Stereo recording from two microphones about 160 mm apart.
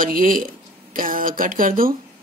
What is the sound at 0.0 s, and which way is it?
Speech, 60° right (ahead or behind).